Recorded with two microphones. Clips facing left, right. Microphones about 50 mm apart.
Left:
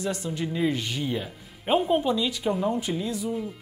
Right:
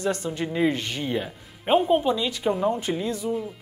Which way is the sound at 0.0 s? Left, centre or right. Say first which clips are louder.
Right 3 dB; right.